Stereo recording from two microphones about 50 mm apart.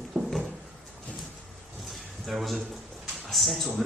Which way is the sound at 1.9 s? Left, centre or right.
Centre.